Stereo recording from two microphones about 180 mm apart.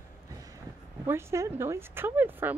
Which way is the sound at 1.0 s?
15° right (ahead or behind).